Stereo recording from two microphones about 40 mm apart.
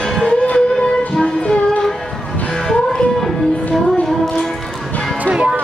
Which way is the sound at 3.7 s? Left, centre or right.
Centre.